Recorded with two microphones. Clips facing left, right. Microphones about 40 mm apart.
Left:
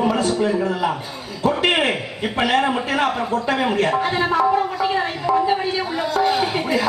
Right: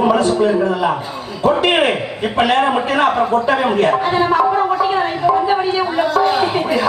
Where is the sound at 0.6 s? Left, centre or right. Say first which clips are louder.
Right 4 dB; right.